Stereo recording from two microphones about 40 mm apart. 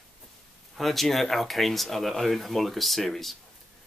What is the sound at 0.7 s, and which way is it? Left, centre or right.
Speech, centre.